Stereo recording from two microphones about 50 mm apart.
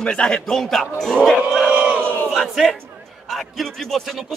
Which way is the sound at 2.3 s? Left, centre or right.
Centre.